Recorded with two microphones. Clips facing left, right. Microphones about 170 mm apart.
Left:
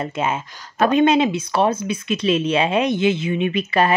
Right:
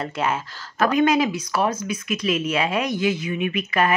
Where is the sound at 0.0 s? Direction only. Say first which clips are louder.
Left 2 dB; 20° left (ahead or behind).